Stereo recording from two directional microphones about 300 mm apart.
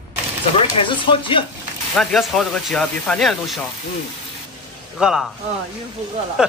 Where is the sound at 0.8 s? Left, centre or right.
Centre.